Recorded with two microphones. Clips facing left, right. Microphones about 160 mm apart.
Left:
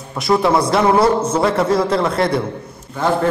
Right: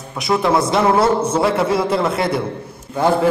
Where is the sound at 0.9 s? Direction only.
25° right (ahead or behind).